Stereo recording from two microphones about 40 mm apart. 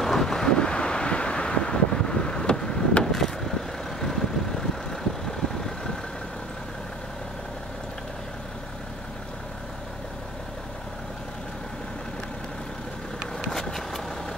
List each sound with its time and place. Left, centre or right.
0.0 s wind noise: centre
3.0 s vehicle: centre
13.5 s vehicle: centre